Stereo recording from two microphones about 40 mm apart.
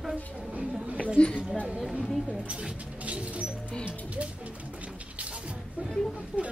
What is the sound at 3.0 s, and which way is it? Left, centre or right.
Music, right.